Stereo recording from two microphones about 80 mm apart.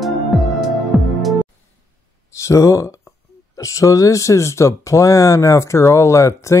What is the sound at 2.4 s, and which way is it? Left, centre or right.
Speech, left.